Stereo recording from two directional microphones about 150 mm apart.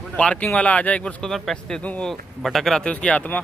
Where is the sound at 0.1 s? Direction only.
10° left (ahead or behind).